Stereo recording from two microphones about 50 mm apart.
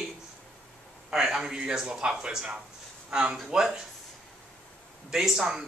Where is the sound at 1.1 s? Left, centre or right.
Centre.